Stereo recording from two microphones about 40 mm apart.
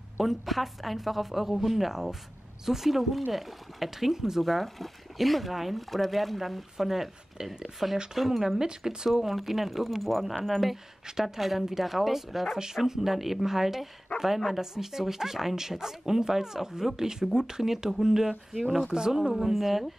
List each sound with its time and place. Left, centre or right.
0.2 s speech: centre
8.1 s speech: centre
8.5 s speech: centre
9.1 s speech: centre
11.1 s speech: centre
12.5 s speech: centre
14.1 s a sound: left
14.6 s speech: centre
19.3 s speech: centre